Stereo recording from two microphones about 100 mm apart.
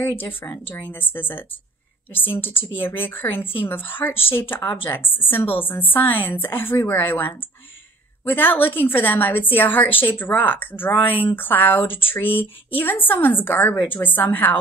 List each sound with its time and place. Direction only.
0.0 s a woman's voice: 20° left (ahead or behind)